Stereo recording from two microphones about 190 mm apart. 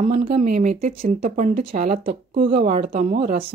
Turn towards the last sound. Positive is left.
turn(degrees=-30)  # may be behind; listen again after turning